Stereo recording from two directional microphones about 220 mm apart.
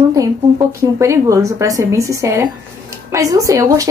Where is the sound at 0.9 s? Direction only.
15° right (ahead or behind).